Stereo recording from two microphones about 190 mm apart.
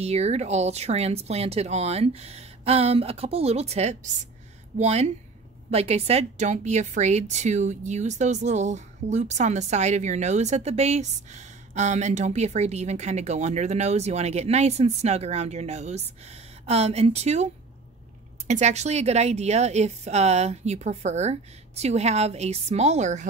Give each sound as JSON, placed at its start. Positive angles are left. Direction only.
{"t": 0.0, "sound": "a woman's voice", "side_deg": -35}
{"t": 18.5, "sound": "a woman's voice", "side_deg": -35}